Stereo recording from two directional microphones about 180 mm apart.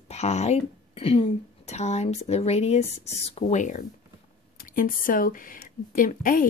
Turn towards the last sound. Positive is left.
turn(degrees=50)  # may be behind; listen again after turning